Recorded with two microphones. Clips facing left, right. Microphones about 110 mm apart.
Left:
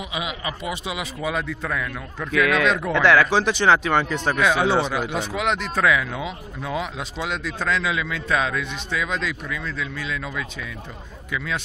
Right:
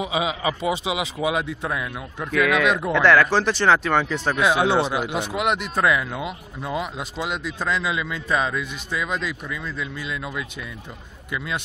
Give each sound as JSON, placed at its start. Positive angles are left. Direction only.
{"t": 0.0, "sound": "a man's voice", "side_deg": -25}